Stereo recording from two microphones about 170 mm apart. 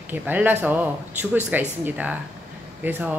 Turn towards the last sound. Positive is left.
turn(degrees=-10)  # may be behind; listen again after turning